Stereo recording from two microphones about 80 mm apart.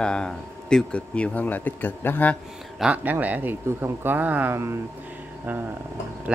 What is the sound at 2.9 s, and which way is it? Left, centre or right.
Speech, right.